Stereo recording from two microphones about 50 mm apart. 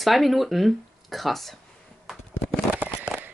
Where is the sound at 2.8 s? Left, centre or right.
Right.